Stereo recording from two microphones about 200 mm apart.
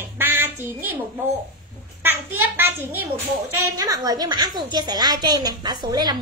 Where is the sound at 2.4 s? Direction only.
10° right (ahead or behind).